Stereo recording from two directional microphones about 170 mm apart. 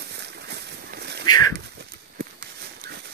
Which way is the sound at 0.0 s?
75° right (ahead or behind).